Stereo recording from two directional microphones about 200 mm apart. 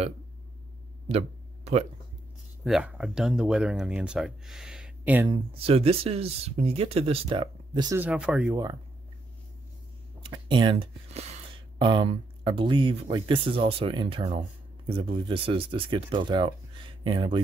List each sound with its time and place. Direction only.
1.0 s a sound: 30° right (ahead or behind)
2.6 s speech: 5° right (ahead or behind)
5.3 s speech: 25° right (ahead or behind)
8.0 s speech: 5° right (ahead or behind)
10.2 s speech: 25° right (ahead or behind)